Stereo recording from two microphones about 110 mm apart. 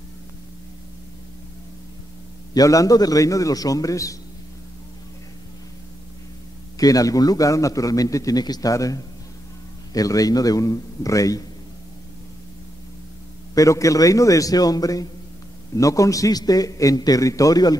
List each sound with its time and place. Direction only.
2.5 s a man's voice: 30° left (ahead or behind)
6.8 s a man's voice: 35° left (ahead or behind)
13.6 s a man's voice: 30° left (ahead or behind)